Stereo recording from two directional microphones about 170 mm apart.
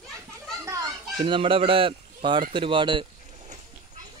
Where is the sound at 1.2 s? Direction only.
30° right (ahead or behind).